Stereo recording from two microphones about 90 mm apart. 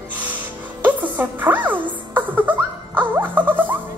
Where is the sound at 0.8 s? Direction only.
20° right (ahead or behind).